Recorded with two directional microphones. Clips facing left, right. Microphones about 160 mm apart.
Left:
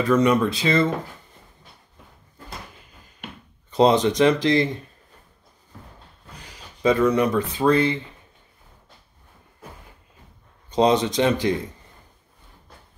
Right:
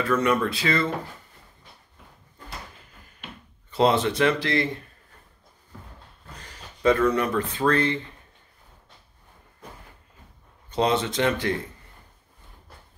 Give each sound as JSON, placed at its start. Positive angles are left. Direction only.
{"t": 0.0, "sound": "speech", "side_deg": 15}
{"t": 3.7, "sound": "speech", "side_deg": 20}
{"t": 6.4, "sound": "speech", "side_deg": 15}
{"t": 10.7, "sound": "speech", "side_deg": 15}